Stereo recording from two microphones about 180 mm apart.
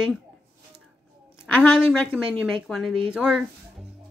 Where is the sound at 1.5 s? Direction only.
5° left (ahead or behind).